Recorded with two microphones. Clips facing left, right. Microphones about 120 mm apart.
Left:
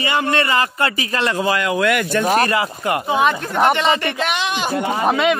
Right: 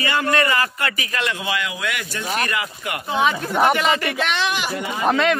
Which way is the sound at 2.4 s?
35° left (ahead or behind).